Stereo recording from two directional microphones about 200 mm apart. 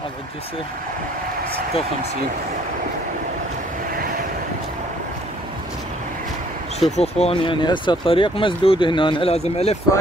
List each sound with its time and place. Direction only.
7.0 s speech: 30° left (ahead or behind)